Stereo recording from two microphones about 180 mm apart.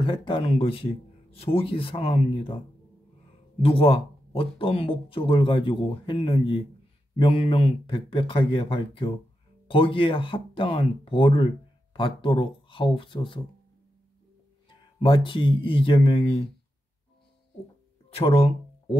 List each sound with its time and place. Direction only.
0.0 s speech: 25° left (ahead or behind)
3.6 s speech: 30° left (ahead or behind)
14.7 s speech: 30° left (ahead or behind)
18.1 s speech: 30° left (ahead or behind)